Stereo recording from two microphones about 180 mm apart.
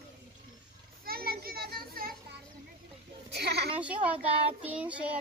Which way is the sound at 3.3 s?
65° right (ahead or behind).